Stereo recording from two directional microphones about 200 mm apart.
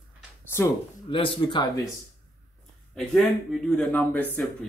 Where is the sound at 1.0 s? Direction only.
25° left (ahead or behind).